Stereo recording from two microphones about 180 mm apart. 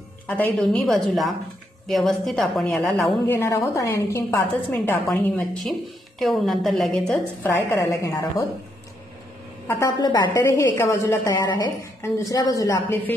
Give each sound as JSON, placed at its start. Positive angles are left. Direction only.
{"t": 0.4, "sound": "a woman's voice", "side_deg": 5}
{"t": 3.3, "sound": "a woman's voice", "side_deg": 15}
{"t": 7.5, "sound": "a woman's voice", "side_deg": 15}
{"t": 9.7, "sound": "a woman's voice", "side_deg": 20}